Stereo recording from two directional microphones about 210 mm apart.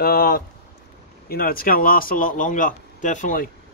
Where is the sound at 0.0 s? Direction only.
45° left (ahead or behind).